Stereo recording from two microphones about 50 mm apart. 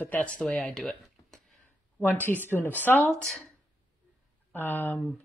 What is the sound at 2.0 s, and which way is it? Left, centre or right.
Speech, left.